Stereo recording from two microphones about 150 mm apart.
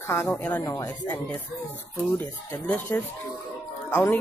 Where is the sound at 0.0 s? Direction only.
15° left (ahead or behind).